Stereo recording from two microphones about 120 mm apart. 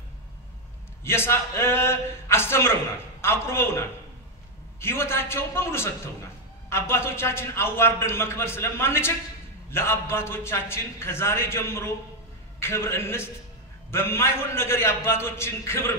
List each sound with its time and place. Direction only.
1.0 s a man's voice: 20° left (ahead or behind)